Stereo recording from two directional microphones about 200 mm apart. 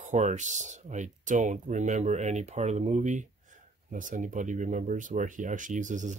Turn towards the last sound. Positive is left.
turn(degrees=-40)  # may be behind; listen again after turning